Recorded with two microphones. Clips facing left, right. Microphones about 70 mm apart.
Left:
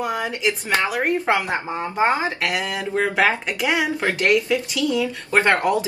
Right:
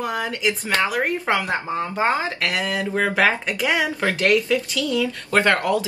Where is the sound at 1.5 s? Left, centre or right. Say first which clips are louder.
Right 1 dB; left.